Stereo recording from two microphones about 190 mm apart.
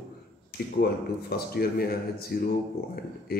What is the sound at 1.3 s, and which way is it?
Speech, 55° left (ahead or behind).